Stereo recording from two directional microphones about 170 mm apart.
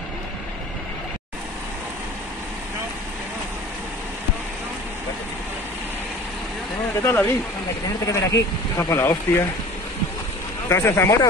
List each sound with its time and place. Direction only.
7.0 s speech: 15° left (ahead or behind)
10.7 s speech: 15° left (ahead or behind)